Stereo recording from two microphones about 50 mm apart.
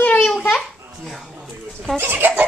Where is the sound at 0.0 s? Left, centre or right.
Left.